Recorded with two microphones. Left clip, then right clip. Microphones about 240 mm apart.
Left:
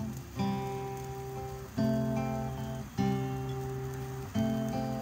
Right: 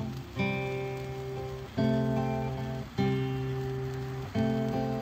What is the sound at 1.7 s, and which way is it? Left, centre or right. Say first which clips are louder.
Music: right 3 dB; left.